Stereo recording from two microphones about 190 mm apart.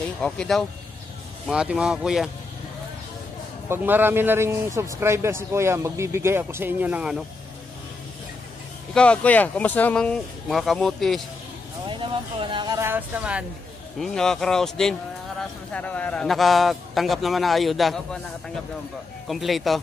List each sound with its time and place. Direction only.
0.2 s a man's voice: 5° left (ahead or behind)
3.6 s a man's voice: 10° right (ahead or behind)
8.9 s a man's voice: 5° left (ahead or behind)
11.9 s a man's voice: 25° right (ahead or behind); by 19.8 s centre (ahead or behind)